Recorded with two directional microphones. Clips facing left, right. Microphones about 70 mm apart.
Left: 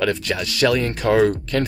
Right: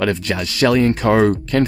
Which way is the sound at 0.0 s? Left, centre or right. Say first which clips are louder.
Right 2 dB; right.